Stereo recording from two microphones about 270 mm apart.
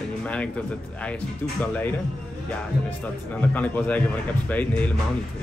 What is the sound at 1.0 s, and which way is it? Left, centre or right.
Speech, centre.